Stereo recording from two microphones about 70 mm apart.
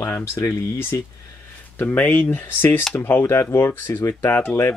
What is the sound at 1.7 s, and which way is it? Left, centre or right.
Speech, left.